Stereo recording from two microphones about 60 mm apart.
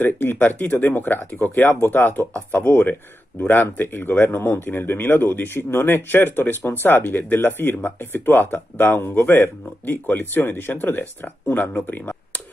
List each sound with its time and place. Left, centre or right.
0.0 s speech: left